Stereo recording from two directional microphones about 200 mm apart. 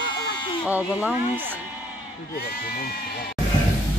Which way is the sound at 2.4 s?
50° left (ahead or behind).